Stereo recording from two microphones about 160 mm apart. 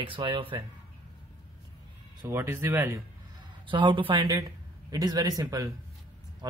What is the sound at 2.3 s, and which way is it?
Speech, 15° right (ahead or behind).